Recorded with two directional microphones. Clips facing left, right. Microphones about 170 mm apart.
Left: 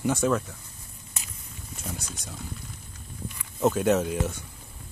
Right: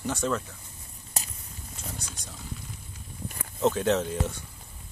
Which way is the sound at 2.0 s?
5° left (ahead or behind).